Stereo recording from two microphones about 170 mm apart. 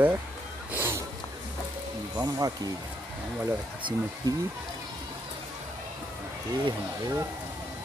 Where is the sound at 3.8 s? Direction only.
30° right (ahead or behind).